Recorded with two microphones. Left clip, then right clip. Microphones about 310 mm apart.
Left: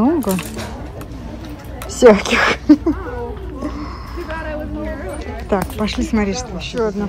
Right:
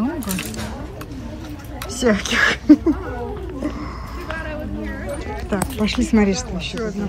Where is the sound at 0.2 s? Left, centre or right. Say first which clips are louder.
Left 6 dB; centre.